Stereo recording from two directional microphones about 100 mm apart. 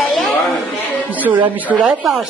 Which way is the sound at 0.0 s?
Centre (ahead or behind).